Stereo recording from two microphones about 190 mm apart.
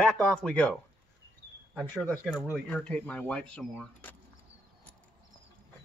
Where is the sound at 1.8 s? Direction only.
10° left (ahead or behind).